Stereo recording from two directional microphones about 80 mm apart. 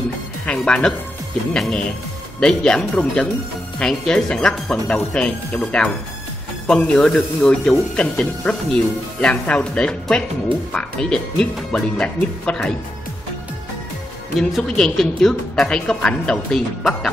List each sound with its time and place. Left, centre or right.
0.5 s a woman's voice: centre
14.6 s a woman's voice: centre